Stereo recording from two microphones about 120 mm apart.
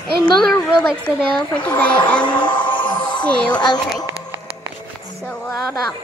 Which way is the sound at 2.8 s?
40° left (ahead or behind).